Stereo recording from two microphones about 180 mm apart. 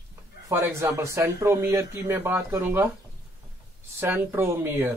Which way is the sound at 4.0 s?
10° right (ahead or behind).